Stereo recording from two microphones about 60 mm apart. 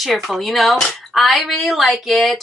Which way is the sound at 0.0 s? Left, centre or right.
Centre.